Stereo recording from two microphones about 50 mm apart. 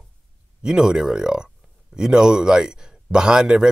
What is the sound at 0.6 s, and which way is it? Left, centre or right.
Speech, centre.